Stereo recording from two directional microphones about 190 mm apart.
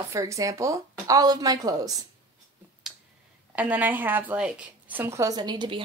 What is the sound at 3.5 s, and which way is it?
A woman's voice, 10° right (ahead or behind).